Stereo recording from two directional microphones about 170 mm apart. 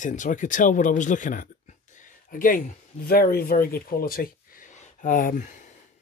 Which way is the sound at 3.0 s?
65° left (ahead or behind).